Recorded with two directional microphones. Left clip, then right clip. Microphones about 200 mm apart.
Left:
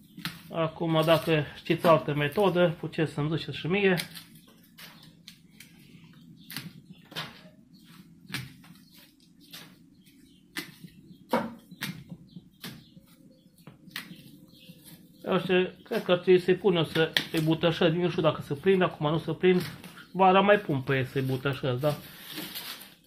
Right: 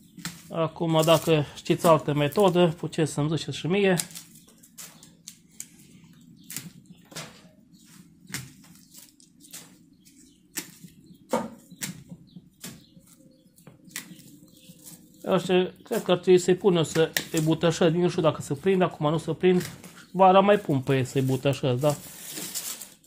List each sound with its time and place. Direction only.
0.5 s speech: 55° right (ahead or behind)
4.7 s a sound: 25° right (ahead or behind)
15.2 s speech: 60° right (ahead or behind)